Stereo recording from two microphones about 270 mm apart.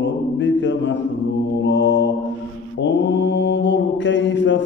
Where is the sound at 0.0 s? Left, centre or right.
Left.